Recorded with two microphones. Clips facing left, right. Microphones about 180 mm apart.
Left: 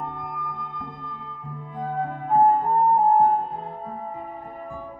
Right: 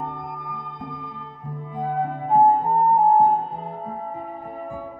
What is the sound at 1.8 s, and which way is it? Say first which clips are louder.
Flute: right 3 dB; 20° right (ahead or behind).